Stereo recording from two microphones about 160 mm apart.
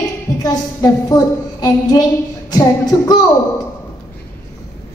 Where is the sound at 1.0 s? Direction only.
25° left (ahead or behind).